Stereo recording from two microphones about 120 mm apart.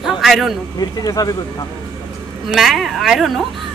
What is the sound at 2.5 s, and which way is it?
Speech, centre (ahead or behind).